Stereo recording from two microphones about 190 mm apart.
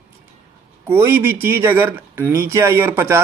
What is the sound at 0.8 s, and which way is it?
Speech, 10° right (ahead or behind).